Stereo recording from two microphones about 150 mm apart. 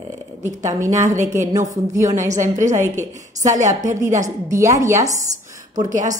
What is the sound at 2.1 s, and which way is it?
Speech, 55° right (ahead or behind).